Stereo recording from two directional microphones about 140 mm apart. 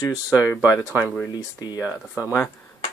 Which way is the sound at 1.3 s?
30° left (ahead or behind).